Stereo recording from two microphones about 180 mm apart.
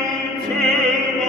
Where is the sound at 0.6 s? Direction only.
Centre (ahead or behind).